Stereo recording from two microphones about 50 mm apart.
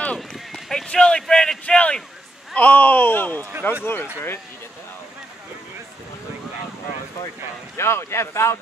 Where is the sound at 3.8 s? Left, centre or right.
Left.